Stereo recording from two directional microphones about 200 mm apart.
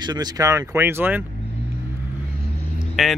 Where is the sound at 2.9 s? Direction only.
Centre (ahead or behind).